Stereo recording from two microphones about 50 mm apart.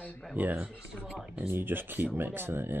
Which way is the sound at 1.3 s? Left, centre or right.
Right.